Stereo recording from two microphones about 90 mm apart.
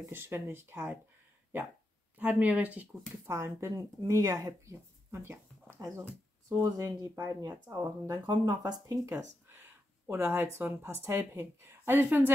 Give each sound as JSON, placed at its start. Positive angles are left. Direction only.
{"t": 0.1, "sound": "speech", "side_deg": -25}
{"t": 2.1, "sound": "speech", "side_deg": -15}
{"t": 3.3, "sound": "speech", "side_deg": -30}
{"t": 5.8, "sound": "speech", "side_deg": -35}